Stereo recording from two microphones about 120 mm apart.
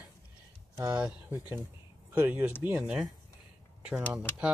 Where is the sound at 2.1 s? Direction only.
15° right (ahead or behind).